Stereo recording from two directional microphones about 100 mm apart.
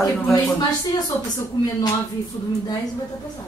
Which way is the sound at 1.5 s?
45° left (ahead or behind).